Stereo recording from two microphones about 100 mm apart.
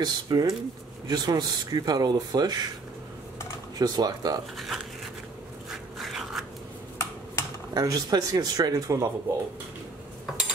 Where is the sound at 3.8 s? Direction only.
40° right (ahead or behind).